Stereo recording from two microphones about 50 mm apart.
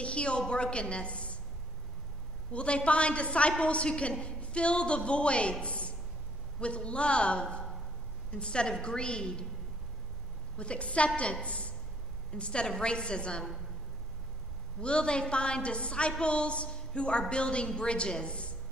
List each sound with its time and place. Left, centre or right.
0.0 s a woman's voice: left
2.5 s a woman's voice: left
10.6 s a woman's voice: left
14.8 s a woman's voice: centre